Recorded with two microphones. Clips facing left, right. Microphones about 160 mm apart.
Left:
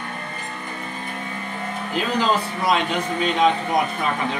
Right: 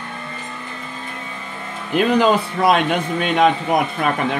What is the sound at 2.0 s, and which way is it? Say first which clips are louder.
Speech: right 6 dB; 60° right (ahead or behind).